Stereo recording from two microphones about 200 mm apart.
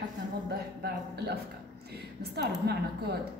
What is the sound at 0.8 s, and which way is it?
A woman's voice, 55° right (ahead or behind).